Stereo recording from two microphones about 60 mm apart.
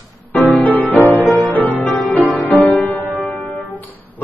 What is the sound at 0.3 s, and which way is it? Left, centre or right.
Music, left.